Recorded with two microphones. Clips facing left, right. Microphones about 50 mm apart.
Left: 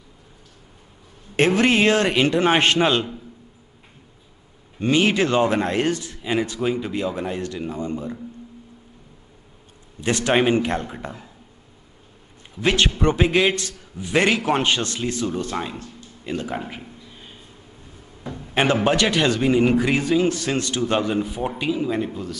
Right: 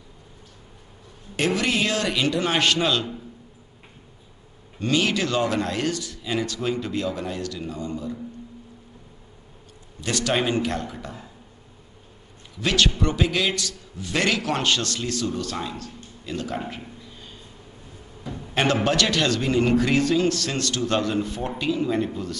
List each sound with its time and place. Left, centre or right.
1.3 s a man's voice: left
4.7 s speech: left
9.9 s speech: left
12.5 s speech: left
16.5 s a sound: centre
18.5 s a man's voice: centre